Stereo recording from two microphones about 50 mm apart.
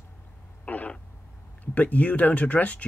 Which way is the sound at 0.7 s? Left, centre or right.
Left.